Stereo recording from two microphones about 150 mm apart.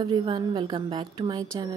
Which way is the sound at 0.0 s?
35° right (ahead or behind).